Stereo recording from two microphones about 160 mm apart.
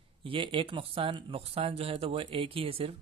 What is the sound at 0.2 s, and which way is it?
Speech, 35° right (ahead or behind).